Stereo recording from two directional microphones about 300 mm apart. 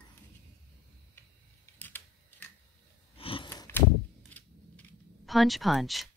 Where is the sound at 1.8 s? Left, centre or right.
Centre.